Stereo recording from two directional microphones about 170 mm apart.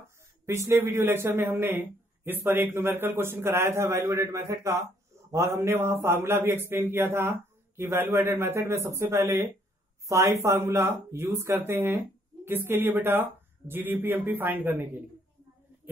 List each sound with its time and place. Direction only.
0.5 s a man's voice: 15° right (ahead or behind)